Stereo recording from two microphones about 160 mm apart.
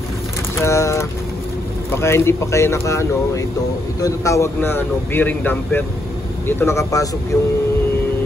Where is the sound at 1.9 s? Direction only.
15° left (ahead or behind).